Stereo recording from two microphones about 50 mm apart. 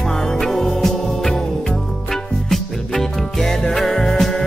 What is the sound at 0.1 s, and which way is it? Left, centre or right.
Music, centre.